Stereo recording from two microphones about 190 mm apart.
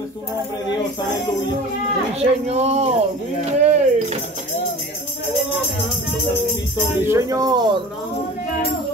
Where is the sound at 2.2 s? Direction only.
35° right (ahead or behind).